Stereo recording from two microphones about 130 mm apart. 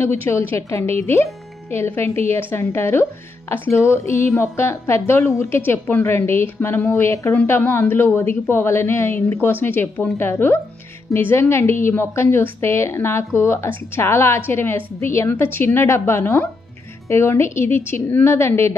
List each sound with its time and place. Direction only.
0.5 s a woman's voice: 20° left (ahead or behind)